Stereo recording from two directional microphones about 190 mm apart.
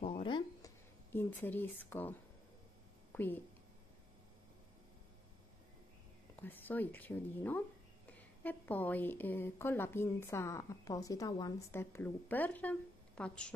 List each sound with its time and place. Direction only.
0.0 s a sound: 30° left (ahead or behind)
1.1 s a woman's voice: 10° left (ahead or behind)
6.4 s a woman's voice: 10° left (ahead or behind)